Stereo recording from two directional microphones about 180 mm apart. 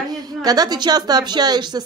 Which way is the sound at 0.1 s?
20° right (ahead or behind).